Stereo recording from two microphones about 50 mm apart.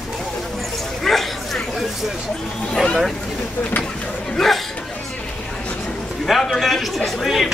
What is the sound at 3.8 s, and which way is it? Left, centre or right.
Chatter, left.